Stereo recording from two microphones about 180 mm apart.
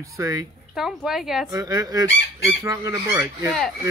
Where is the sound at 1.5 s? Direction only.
20° right (ahead or behind).